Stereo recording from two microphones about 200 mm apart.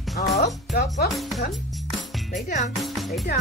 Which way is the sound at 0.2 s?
45° left (ahead or behind).